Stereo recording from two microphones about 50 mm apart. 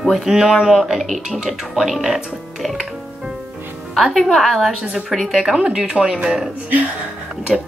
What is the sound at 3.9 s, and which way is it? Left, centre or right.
Speech, centre.